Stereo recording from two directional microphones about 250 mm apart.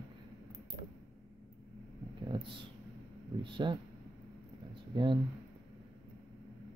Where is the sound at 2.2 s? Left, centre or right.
Centre.